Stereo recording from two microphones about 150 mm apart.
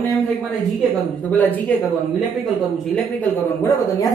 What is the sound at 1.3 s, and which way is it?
Speech, 10° left (ahead or behind).